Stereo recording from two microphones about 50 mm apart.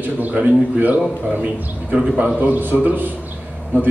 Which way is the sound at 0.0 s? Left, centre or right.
Right.